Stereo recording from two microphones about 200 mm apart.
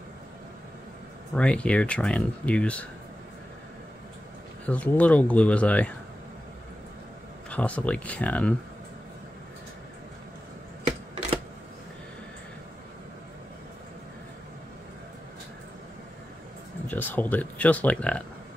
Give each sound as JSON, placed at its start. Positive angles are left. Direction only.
{"t": 1.3, "sound": "speech", "side_deg": 5}
{"t": 4.6, "sound": "speech", "side_deg": 5}
{"t": 7.4, "sound": "speech", "side_deg": 5}
{"t": 10.8, "sound": "typewriter", "side_deg": -35}
{"t": 16.8, "sound": "speech", "side_deg": 10}